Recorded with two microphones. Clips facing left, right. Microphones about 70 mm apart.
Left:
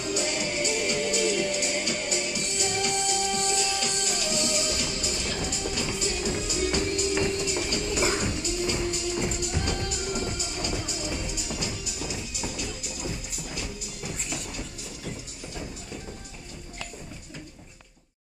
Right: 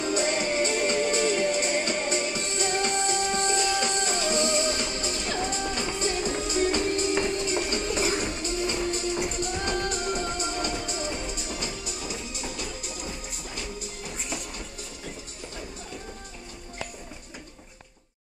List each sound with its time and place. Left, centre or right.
0.0 s music: right